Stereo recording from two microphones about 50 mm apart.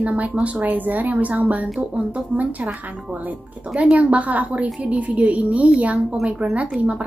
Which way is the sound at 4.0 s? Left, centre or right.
Right.